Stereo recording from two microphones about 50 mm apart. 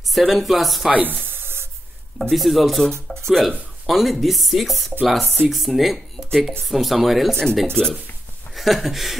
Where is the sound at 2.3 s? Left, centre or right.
Centre.